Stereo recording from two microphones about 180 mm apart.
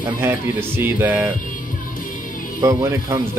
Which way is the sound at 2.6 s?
20° right (ahead or behind).